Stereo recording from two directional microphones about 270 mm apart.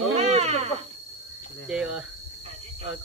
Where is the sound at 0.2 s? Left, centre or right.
Right.